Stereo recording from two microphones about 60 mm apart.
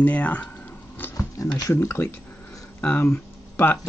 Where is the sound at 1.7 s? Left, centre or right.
Left.